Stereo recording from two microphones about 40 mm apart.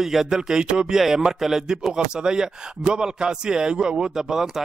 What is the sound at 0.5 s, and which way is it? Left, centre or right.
A man's voice, centre.